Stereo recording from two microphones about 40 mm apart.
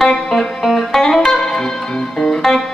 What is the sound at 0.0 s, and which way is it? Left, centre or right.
Music, centre.